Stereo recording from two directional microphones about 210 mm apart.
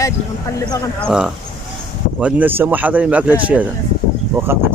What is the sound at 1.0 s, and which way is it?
Speech, 5° right (ahead or behind).